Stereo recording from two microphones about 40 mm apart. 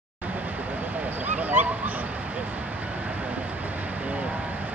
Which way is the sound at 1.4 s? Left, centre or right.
Right.